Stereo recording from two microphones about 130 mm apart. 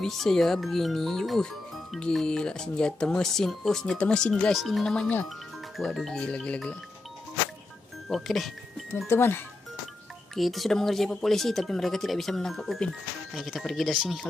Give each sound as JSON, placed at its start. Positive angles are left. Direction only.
{"t": 0.0, "sound": "speech", "side_deg": 0}
{"t": 8.1, "sound": "speech", "side_deg": 0}
{"t": 8.9, "sound": "speech", "side_deg": 20}
{"t": 10.3, "sound": "speech", "side_deg": 0}